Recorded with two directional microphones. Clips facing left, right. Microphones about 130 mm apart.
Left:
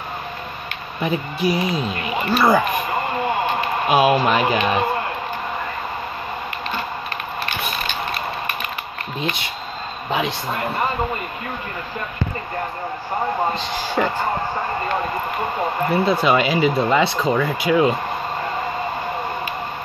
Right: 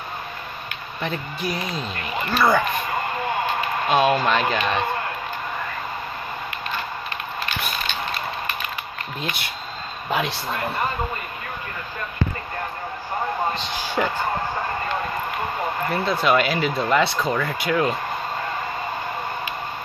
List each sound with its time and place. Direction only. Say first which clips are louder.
1.0 s speech: left 7 dB; 5° left (ahead or behind)
3.8 s speech: left 3 dB; 10° left (ahead or behind)
10.0 s a man's voice: left 2 dB; centre (ahead or behind)
13.6 s speech: left 3 dB; 5° left (ahead or behind)
15.9 s speech: left 3 dB; 5° left (ahead or behind)